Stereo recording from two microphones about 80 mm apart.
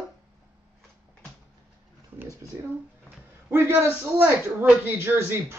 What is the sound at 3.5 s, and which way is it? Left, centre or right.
A man's voice, right.